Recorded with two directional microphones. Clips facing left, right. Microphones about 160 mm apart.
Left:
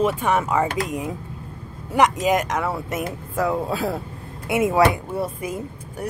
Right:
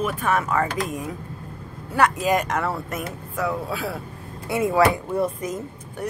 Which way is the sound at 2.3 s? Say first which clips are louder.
Left 1 dB; 5° left (ahead or behind).